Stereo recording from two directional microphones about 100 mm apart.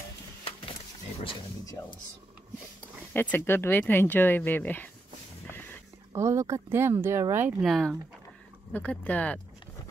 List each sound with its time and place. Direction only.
3.1 s speech: 20° left (ahead or behind)
6.1 s speech: 30° right (ahead or behind)
7.6 s speech: centre (ahead or behind)
8.7 s speech: 15° left (ahead or behind)